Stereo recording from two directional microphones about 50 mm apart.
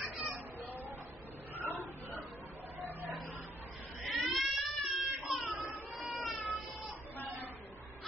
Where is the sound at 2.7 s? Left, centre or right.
Right.